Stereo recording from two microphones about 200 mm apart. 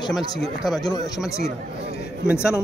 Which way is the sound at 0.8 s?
20° left (ahead or behind).